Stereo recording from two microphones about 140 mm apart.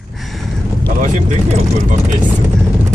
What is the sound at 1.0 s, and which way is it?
Speech, 60° right (ahead or behind).